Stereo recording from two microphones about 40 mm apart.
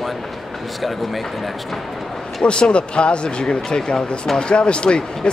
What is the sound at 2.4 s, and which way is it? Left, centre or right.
Speech, left.